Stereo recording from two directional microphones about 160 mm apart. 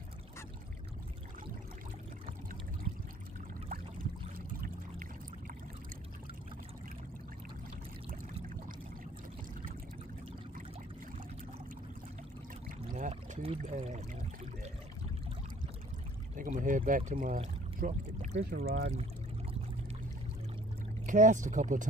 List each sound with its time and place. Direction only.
12.6 s a sound: 55° right (ahead or behind)
13.1 s pour: 35° right (ahead or behind)
13.6 s pour: 50° right (ahead or behind)
16.3 s speech: 55° right (ahead or behind)
18.4 s speech: 70° right (ahead or behind)
21.0 s speech: 55° right (ahead or behind)